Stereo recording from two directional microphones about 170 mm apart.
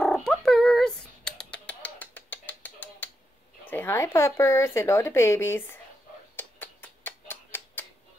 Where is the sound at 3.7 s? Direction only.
15° left (ahead or behind).